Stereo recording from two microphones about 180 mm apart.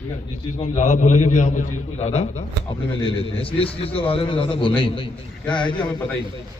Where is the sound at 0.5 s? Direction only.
40° left (ahead or behind).